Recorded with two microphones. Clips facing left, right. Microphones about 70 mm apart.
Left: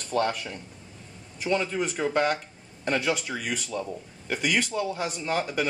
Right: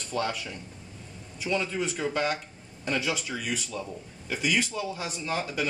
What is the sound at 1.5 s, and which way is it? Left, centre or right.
Speech, left.